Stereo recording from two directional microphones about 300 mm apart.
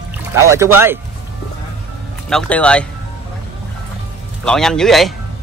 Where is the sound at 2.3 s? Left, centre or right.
Centre.